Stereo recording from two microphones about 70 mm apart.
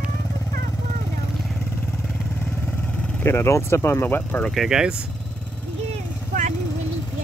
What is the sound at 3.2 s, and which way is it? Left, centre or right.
Speech, left.